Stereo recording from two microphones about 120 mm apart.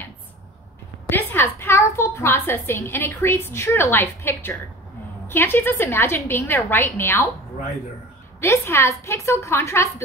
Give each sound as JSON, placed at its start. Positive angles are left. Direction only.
{"t": 1.0, "sound": "a woman's voice", "side_deg": 20}
{"t": 8.4, "sound": "a woman's voice", "side_deg": 20}